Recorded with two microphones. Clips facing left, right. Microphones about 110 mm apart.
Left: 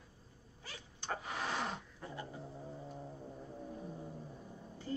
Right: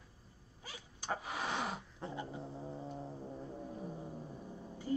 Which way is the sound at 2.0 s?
25° right (ahead or behind).